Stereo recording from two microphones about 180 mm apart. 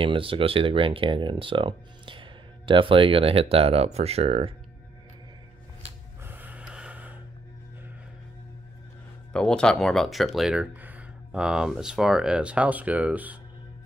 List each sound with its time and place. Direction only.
0.0 s speech: 30° right (ahead or behind)
6.2 s gasp: 10° right (ahead or behind)
9.3 s speech: 5° left (ahead or behind)